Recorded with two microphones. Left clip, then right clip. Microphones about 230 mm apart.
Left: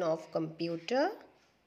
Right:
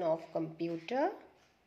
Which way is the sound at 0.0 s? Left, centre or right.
Left.